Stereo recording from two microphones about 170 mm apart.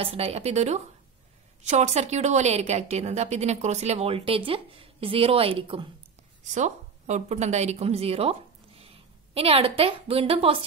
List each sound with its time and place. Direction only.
0.0 s a woman's voice: 35° right (ahead or behind)
6.5 s a woman's voice: 45° right (ahead or behind)